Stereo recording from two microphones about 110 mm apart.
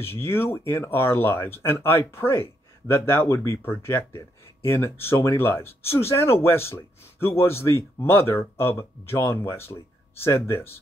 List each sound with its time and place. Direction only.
0.0 s speech: 20° left (ahead or behind)